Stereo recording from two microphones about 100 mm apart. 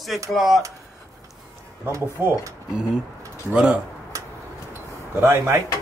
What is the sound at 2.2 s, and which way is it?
Speech, 20° right (ahead or behind).